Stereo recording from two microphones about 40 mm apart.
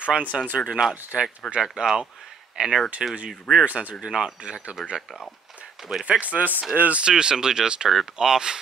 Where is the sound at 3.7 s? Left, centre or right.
Right.